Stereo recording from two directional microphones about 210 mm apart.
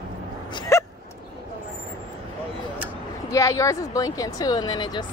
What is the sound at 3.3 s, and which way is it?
Speech, 15° left (ahead or behind).